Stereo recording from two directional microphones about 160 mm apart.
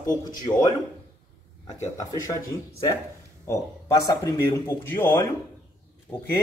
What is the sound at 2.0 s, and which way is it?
Speech, 20° left (ahead or behind).